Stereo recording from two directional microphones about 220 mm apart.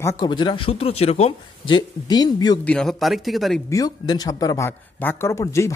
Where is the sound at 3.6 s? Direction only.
15° left (ahead or behind).